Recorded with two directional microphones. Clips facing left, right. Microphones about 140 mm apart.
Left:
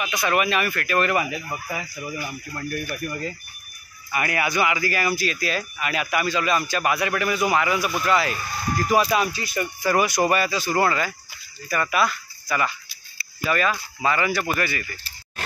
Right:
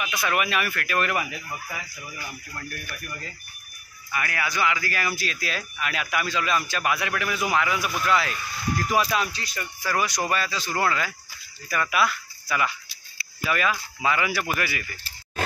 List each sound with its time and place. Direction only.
0.1 s speech: centre (ahead or behind)
2.5 s speech: 30° left (ahead or behind)
4.1 s speech: 20° left (ahead or behind); by 8.0 s centre (ahead or behind)
8.3 s speech: 45° left (ahead or behind)
8.9 s speech: 5° left (ahead or behind)